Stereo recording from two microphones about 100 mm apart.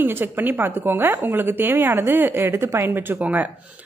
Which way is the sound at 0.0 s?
20° right (ahead or behind).